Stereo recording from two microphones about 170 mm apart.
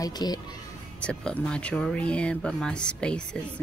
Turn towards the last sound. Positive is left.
turn(degrees=5)  # may be behind; listen again after turning